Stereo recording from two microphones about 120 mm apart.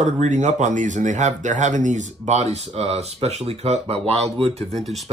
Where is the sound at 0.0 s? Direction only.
80° right; by 4.6 s 60° right (ahead or behind).